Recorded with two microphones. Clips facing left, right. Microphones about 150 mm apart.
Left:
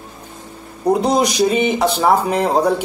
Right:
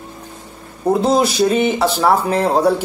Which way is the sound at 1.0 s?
15° left (ahead or behind).